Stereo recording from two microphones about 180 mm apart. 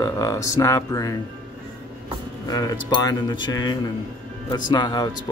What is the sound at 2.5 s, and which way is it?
Speech, 20° left (ahead or behind).